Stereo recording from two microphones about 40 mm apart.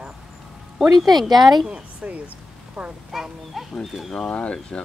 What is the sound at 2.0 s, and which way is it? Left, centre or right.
Speech, right.